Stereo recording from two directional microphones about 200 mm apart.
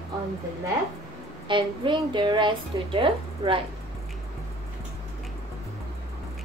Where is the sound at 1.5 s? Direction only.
25° right (ahead or behind).